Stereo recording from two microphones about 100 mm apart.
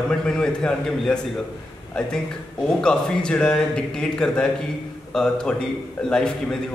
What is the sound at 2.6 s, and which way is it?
A man's voice, 10° left (ahead or behind).